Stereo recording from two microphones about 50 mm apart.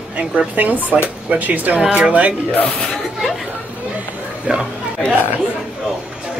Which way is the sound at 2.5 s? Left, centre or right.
Left.